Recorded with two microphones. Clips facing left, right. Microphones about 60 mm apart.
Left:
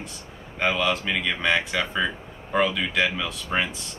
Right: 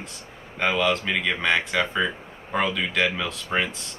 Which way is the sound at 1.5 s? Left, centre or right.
Centre.